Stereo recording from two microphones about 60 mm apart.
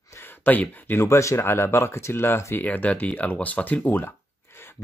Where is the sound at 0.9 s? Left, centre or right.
Left.